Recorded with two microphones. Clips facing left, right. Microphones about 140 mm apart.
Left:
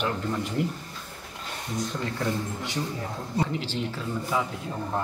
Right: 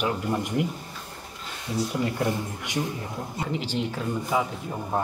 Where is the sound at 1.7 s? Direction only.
15° right (ahead or behind).